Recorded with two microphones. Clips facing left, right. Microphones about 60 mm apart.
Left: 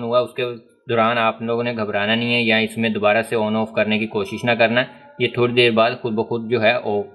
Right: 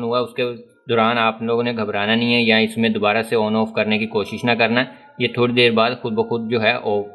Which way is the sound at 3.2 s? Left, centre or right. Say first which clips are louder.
Right 1 dB; left.